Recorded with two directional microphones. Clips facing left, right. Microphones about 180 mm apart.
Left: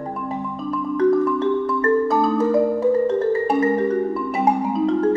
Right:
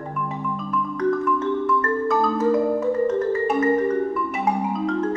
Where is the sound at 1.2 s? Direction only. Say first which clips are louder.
Left 3 dB; 35° left (ahead or behind).